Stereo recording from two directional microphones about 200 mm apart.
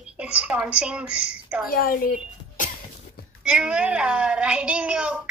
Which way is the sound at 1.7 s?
45° left (ahead or behind).